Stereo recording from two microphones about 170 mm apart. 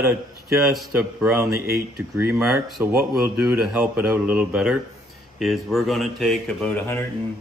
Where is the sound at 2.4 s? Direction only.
Centre (ahead or behind).